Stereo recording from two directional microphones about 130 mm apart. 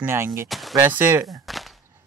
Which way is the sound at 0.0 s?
20° right (ahead or behind).